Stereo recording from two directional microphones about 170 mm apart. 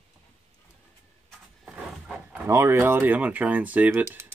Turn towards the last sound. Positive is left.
turn(degrees=-10)  # may be behind; listen again after turning